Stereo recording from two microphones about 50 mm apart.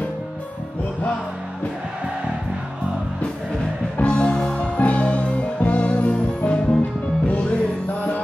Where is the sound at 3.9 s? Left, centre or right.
Left.